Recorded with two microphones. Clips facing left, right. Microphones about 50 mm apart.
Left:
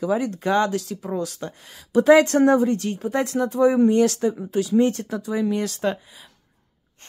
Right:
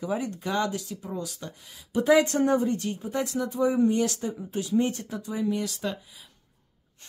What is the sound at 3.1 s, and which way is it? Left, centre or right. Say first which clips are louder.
Speech: left 6 dB; left.